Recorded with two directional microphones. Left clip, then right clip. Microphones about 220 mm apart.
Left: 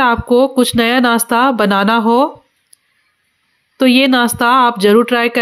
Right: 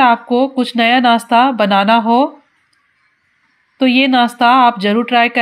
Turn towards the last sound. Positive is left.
turn(degrees=40)  # may be behind; listen again after turning